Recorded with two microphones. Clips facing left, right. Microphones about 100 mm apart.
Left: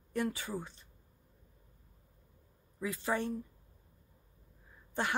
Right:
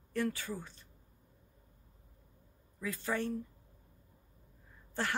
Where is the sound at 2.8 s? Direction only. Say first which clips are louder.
Left 2 dB; 20° left (ahead or behind).